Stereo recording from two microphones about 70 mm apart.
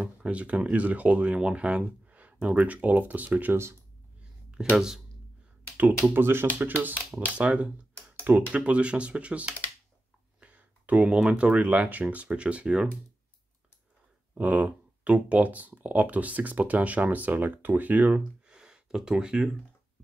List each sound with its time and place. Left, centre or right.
0.0 s speech: centre
4.5 s speech: centre
6.1 s speech: right; by 12.8 s centre
14.3 s speech: right
18.5 s gasp: centre